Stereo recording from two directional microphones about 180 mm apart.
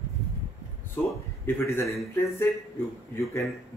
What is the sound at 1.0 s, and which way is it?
Speech, 10° left (ahead or behind).